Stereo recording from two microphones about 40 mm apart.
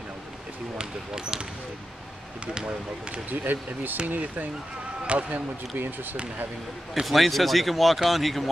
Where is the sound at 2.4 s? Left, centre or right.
Right.